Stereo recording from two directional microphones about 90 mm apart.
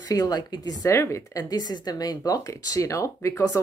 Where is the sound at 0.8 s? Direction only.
35° left (ahead or behind).